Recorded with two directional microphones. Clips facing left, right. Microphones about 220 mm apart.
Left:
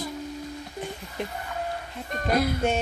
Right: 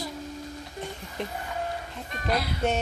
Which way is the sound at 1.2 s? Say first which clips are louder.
Left 1 dB; centre (ahead or behind).